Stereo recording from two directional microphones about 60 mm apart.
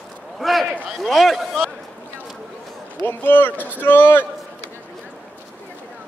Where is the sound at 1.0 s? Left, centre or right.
Centre.